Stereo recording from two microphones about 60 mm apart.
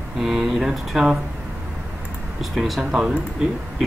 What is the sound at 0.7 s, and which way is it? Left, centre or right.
Speech, centre.